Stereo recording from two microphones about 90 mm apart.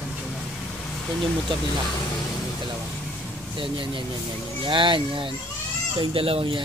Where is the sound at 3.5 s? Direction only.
70° right (ahead or behind).